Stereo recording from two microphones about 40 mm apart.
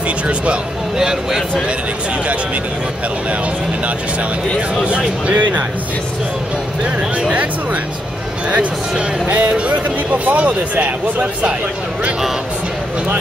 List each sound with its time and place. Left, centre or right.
0.9 s speech: centre
4.8 s speech: right
6.8 s speech: right
9.3 s speech: right